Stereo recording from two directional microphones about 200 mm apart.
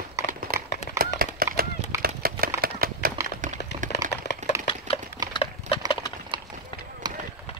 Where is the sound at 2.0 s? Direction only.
45° right (ahead or behind).